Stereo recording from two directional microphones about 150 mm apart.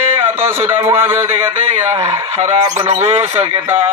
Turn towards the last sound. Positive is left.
turn(degrees=-40)  # may be behind; listen again after turning